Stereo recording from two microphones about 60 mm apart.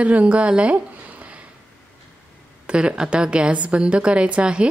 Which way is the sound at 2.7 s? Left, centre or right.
Centre.